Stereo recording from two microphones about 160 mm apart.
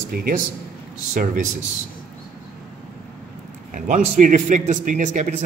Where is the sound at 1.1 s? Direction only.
50° right (ahead or behind).